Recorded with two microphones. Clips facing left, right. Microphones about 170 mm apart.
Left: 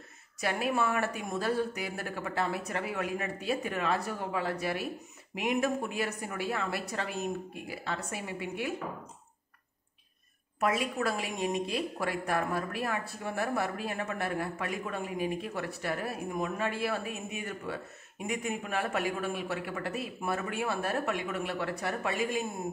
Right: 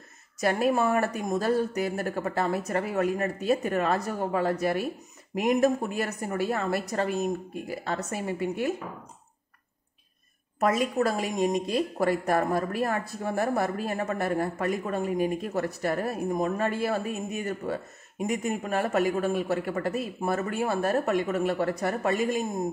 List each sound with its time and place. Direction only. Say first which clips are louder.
0.4 s speech: right 6 dB; 40° right (ahead or behind)
10.6 s speech: right 5 dB; 40° right (ahead or behind)